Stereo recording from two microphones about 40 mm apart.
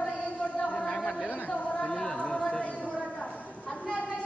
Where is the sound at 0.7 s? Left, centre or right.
Centre.